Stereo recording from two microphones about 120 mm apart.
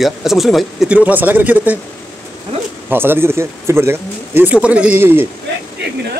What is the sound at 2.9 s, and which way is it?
Speech, 20° right (ahead or behind).